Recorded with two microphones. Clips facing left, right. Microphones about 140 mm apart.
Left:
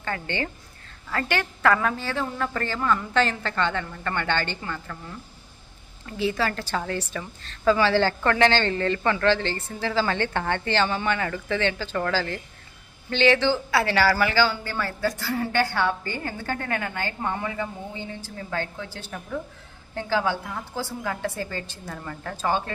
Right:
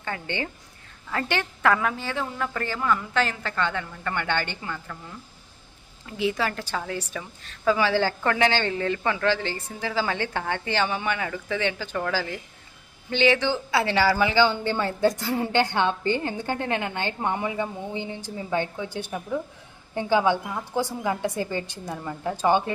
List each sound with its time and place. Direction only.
0.0 s a woman's voice: 15° right (ahead or behind)
6.0 s a woman's voice: 15° right (ahead or behind)